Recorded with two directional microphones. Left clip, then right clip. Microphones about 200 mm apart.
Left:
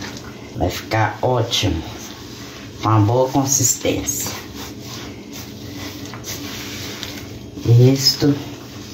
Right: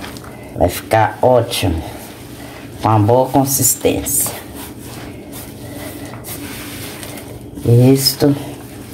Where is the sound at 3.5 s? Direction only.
55° right (ahead or behind).